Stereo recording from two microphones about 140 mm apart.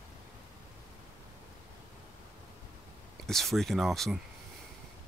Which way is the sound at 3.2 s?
Centre (ahead or behind).